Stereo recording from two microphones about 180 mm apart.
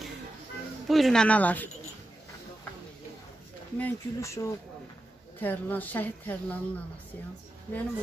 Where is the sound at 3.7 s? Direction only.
15° left (ahead or behind).